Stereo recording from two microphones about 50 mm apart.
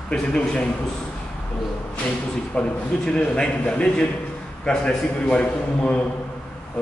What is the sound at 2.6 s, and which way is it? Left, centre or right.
A man's voice, centre.